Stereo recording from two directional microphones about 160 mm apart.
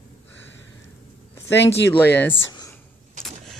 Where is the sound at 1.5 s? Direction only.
90° left.